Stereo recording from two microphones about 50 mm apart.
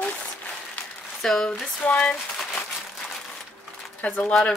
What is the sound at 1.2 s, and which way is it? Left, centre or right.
Speech, centre.